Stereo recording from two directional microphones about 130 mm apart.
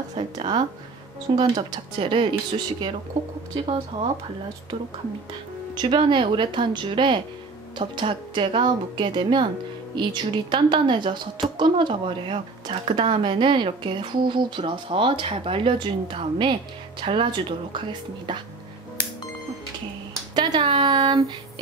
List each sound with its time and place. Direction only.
0.1 s a woman's voice: 40° right (ahead or behind)
3.5 s speech: 45° right (ahead or behind)
5.8 s a woman's voice: 40° right (ahead or behind)
20.3 s speech: 35° right (ahead or behind)